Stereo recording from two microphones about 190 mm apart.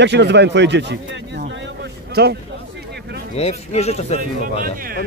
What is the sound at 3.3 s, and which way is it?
Speech, 35° left (ahead or behind).